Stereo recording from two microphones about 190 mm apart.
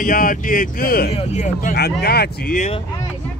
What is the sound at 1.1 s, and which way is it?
Speech, 35° left (ahead or behind).